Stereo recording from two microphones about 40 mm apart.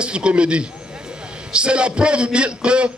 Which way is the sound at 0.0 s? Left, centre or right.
Right.